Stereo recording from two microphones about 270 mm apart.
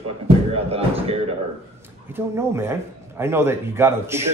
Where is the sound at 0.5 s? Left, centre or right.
Right.